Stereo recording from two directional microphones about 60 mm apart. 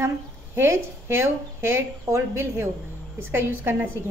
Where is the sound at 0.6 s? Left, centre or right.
Right.